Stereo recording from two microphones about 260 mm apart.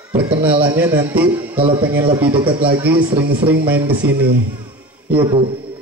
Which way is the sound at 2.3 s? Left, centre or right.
Centre.